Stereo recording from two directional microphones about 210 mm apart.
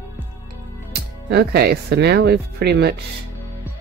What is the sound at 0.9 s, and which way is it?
Speech, 50° right (ahead or behind).